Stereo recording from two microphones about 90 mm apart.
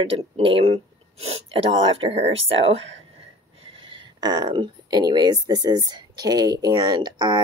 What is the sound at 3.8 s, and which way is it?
Speech, 70° right (ahead or behind).